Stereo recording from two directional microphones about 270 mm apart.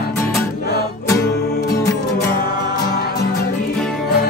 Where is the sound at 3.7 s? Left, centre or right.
Centre.